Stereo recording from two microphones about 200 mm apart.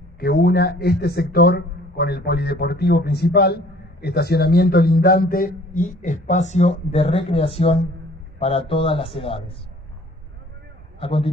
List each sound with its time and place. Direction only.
0.2 s a man's voice: 50° left (ahead or behind); by 9.6 s 25° left (ahead or behind)
11.0 s a man's voice: 30° left (ahead or behind)